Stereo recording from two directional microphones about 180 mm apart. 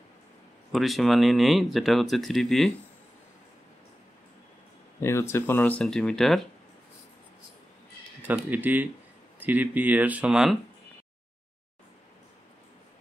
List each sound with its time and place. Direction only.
0.7 s speech: centre (ahead or behind)
5.0 s speech: 15° left (ahead or behind)
8.3 s speech: 10° right (ahead or behind)